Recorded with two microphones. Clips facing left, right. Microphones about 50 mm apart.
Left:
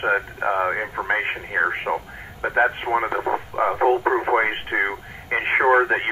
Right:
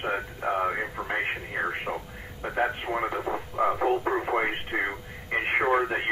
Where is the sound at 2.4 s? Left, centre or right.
Left.